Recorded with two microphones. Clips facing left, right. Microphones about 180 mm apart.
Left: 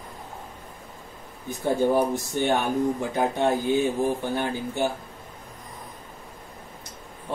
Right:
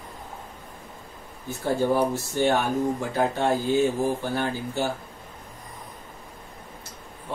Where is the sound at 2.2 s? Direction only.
15° left (ahead or behind).